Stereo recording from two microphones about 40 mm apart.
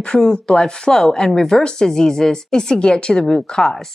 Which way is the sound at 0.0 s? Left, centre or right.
Left.